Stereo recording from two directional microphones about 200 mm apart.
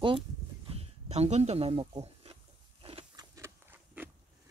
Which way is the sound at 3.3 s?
10° right (ahead or behind).